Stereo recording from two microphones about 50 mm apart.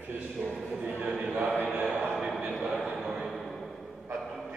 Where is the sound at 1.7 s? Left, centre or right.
Right.